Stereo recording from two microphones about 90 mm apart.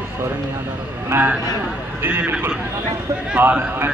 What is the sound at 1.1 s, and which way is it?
A man's voice, 20° right (ahead or behind).